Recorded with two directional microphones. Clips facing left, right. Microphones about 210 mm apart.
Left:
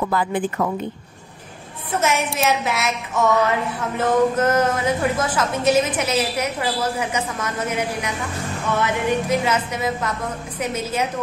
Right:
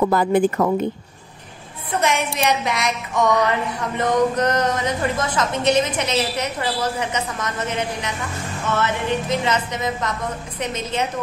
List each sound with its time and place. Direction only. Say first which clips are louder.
0.1 s a woman's voice: right 5 dB; 40° right (ahead or behind)
1.9 s music: even; 5° left (ahead or behind)